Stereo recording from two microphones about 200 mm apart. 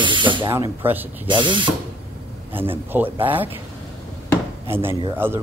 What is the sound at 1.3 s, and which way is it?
Speech, 25° right (ahead or behind).